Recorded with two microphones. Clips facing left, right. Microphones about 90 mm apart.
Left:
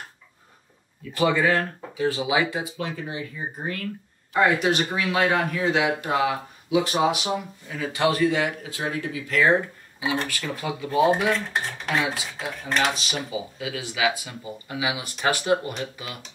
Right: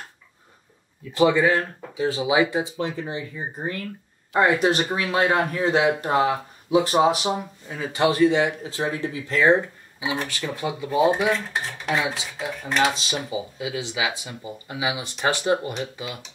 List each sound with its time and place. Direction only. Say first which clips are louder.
1.1 s speech: right 3 dB; 20° right (ahead or behind); by 7.2 s 35° right (ahead or behind)
7.6 s speech: right 2 dB; 20° right (ahead or behind)
11.1 s dishes: even; 5° right (ahead or behind)
13.1 s speech: right 2 dB; 20° right (ahead or behind)